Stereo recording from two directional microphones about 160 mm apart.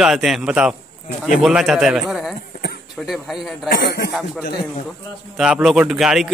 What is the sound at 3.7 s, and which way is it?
Speech, 90° left.